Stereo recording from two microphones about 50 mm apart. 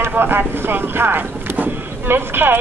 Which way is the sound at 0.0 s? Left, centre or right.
Right.